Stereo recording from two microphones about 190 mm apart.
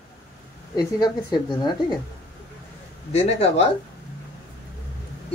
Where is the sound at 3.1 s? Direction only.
35° left (ahead or behind).